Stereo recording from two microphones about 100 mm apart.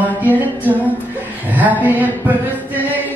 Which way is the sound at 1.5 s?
15° right (ahead or behind).